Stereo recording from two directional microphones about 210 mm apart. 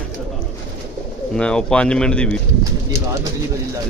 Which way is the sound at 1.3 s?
5° left (ahead or behind).